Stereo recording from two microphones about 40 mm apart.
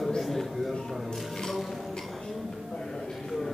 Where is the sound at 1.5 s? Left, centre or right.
Centre.